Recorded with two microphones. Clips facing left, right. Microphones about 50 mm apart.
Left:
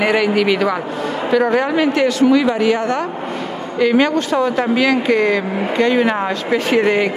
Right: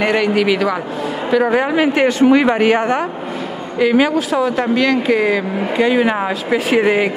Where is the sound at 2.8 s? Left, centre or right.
Centre.